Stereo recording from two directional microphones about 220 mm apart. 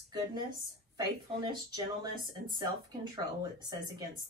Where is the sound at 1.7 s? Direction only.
20° right (ahead or behind).